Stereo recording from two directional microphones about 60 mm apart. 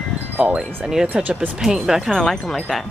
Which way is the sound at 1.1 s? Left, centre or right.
Right.